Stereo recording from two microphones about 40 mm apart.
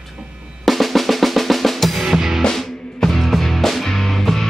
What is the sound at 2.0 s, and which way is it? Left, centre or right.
Music, centre.